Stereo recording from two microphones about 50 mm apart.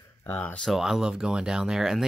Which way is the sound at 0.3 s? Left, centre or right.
Left.